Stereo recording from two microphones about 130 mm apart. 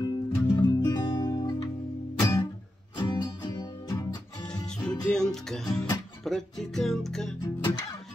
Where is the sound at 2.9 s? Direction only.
35° left (ahead or behind).